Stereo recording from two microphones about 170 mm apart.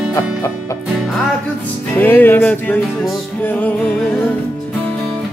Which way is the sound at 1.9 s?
10° left (ahead or behind).